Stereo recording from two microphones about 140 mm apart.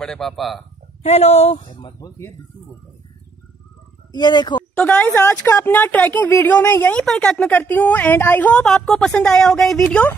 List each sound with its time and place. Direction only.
0.0 s speech: 5° left (ahead or behind)
1.0 s speech: 50° left (ahead or behind)
2.0 s speech: 20° left (ahead or behind)
4.1 s speech: 30° left (ahead or behind)
4.6 s speech: 15° left (ahead or behind)